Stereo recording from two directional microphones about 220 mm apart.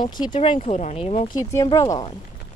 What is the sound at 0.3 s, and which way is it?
Speech, 20° left (ahead or behind).